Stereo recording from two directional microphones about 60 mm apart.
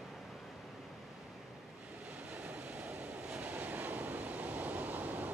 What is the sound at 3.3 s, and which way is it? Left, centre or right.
Waves, right.